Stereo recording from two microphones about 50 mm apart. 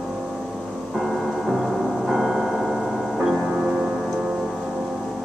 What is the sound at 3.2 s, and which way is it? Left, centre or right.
Music, centre.